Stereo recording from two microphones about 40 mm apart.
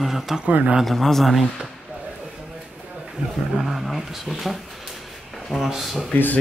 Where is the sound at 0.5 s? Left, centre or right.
Right.